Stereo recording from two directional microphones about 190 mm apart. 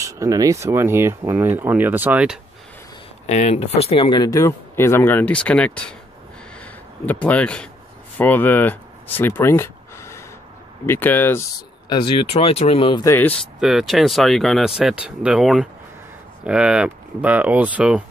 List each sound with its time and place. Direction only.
0.0 s speech: 15° right (ahead or behind)
3.3 s speech: 35° left (ahead or behind); by 11.4 s 10° left (ahead or behind)
11.9 s speech: 25° left (ahead or behind)
13.0 s speech: 10° left (ahead or behind)
13.6 s speech: centre (ahead or behind)